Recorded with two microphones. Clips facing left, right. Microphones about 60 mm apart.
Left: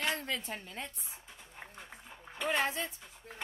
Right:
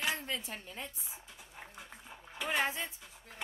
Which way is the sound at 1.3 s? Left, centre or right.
Centre.